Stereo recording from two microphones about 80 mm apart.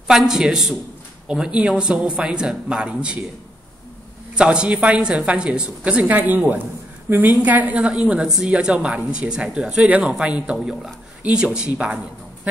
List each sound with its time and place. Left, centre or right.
0.1 s a woman's voice: centre
4.4 s a woman's voice: centre